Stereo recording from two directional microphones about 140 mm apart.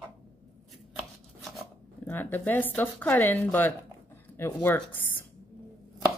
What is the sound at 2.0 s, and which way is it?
Speech, 15° left (ahead or behind).